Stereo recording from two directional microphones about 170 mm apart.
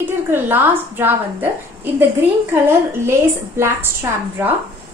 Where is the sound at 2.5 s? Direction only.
15° right (ahead or behind).